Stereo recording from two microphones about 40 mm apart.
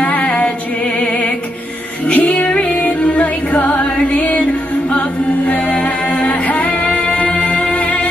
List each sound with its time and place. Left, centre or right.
0.0 s female singing: left
2.1 s music: left
6.9 s music: left